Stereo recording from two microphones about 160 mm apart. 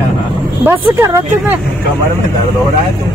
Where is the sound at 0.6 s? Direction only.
15° right (ahead or behind).